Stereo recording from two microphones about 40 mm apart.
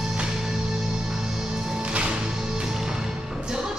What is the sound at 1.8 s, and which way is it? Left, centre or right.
Music, right.